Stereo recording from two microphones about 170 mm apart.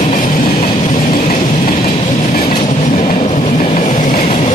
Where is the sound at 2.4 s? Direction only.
35° left (ahead or behind).